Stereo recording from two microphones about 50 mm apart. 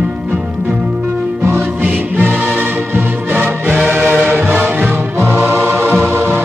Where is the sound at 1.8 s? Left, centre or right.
Right.